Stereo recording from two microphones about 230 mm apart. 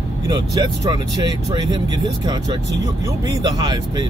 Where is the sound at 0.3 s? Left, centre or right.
Centre.